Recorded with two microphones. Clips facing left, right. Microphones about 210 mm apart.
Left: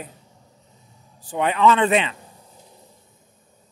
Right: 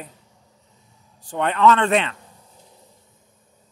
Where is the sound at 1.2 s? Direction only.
5° left (ahead or behind).